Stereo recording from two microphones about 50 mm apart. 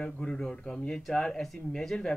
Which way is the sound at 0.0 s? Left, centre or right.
Centre.